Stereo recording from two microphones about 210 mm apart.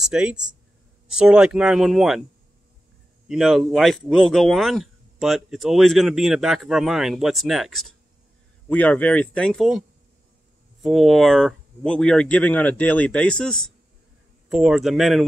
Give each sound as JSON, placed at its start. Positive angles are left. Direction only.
{"t": 0.0, "sound": "speech", "side_deg": -5}
{"t": 3.3, "sound": "speech", "side_deg": 0}